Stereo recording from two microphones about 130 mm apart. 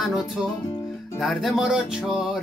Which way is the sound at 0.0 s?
Centre (ahead or behind).